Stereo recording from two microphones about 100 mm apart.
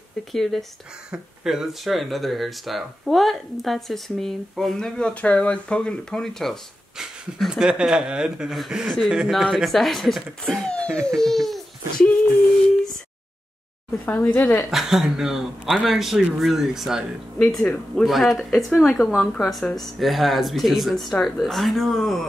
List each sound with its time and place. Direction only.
0.3 s speech: 5° left (ahead or behind)
14.0 s a woman's voice: 10° left (ahead or behind)
14.3 s a woman's voice: 20° left (ahead or behind)
14.6 s speech: 5° right (ahead or behind)